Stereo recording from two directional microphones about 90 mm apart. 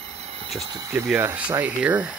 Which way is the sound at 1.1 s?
20° right (ahead or behind).